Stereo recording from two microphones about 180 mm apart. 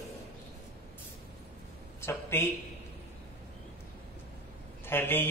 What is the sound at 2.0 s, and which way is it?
Speech, 15° left (ahead or behind).